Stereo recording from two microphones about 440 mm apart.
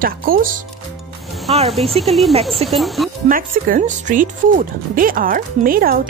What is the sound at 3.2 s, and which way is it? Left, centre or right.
Speech, centre.